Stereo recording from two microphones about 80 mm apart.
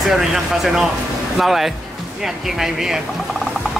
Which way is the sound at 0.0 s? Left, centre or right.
Centre.